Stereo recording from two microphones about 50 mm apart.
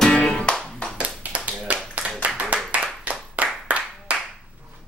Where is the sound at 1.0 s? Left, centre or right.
Right.